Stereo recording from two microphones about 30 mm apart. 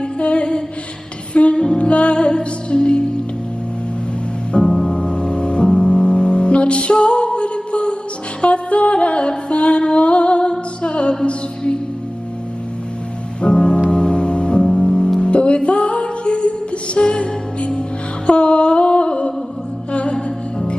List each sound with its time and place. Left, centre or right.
0.2 s music: left
1.6 s music: left
1.9 s music: left
4.5 s music: left
13.4 s music: left